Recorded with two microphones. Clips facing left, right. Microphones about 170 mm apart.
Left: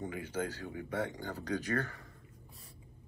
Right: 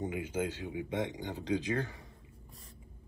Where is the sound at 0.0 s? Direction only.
20° right (ahead or behind).